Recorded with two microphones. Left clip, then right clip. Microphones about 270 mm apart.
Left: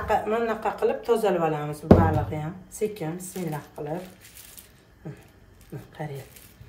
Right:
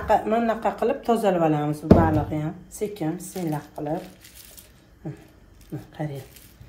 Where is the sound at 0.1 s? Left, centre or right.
Centre.